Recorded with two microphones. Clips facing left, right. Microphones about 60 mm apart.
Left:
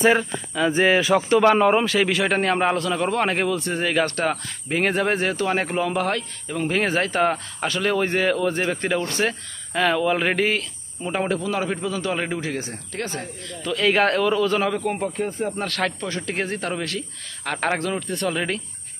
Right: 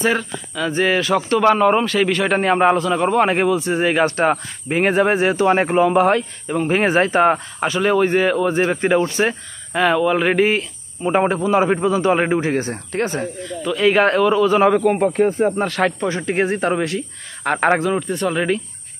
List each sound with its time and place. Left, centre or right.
0.0 s speech: centre
2.3 s speech: centre
3.8 s speech: right
9.3 s speech: centre
11.1 s speech: right
13.4 s speech: centre
14.6 s speech: right
15.5 s speech: centre
17.7 s speech: centre